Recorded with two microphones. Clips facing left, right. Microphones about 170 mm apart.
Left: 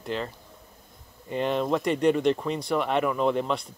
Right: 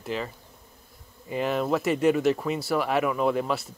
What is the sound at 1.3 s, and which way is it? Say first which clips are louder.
Speech: even; 5° right (ahead or behind).